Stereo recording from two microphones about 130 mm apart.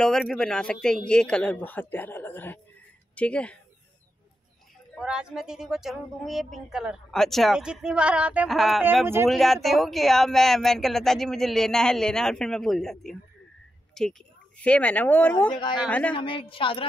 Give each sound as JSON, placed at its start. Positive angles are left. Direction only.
{"t": 0.0, "sound": "a man's voice", "side_deg": 5}
{"t": 4.9, "sound": "speech", "side_deg": -5}
{"t": 9.0, "sound": "speech", "side_deg": -20}
{"t": 9.3, "sound": "a man's voice", "side_deg": 0}
{"t": 16.2, "sound": "a woman's voice", "side_deg": 40}